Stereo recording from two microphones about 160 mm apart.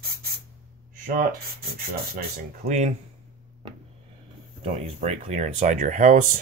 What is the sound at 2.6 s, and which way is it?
Speech, 45° right (ahead or behind).